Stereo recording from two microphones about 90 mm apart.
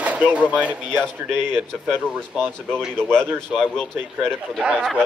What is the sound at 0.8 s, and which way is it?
Speech, 10° left (ahead or behind).